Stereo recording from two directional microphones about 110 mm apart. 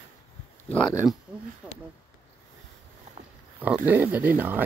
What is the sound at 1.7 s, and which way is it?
Speech, 20° left (ahead or behind).